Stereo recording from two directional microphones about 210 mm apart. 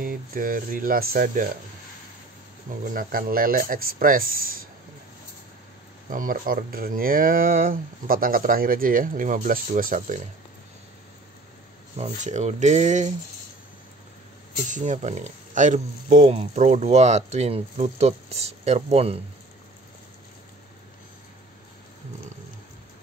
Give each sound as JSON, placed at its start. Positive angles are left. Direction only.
{"t": 0.0, "sound": "speech", "side_deg": -40}
{"t": 2.8, "sound": "speech", "side_deg": -40}
{"t": 6.0, "sound": "speech", "side_deg": -40}
{"t": 12.0, "sound": "speech", "side_deg": -35}
{"t": 14.7, "sound": "speech", "side_deg": -35}